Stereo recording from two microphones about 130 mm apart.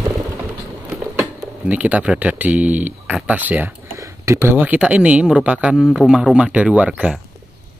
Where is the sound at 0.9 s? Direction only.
5° right (ahead or behind).